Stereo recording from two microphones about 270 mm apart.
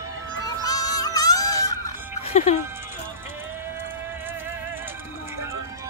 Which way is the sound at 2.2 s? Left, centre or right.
Left.